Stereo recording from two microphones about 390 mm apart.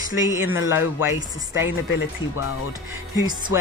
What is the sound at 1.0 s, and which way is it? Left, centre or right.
Speech, centre.